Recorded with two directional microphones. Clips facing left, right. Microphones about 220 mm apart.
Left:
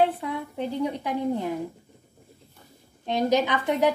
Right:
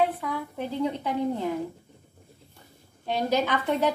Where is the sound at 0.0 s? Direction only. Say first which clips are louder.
Left 2 dB; 25° left (ahead or behind).